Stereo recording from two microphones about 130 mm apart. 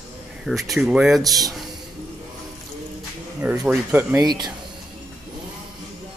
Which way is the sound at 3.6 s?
15° right (ahead or behind).